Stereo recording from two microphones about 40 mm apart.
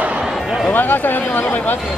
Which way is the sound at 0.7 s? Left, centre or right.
Left.